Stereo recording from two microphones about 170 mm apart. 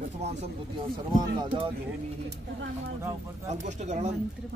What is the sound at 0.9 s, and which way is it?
Speech, 25° right (ahead or behind).